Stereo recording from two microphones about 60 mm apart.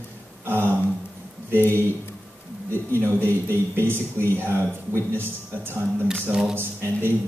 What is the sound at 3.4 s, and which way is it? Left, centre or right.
Speech, right.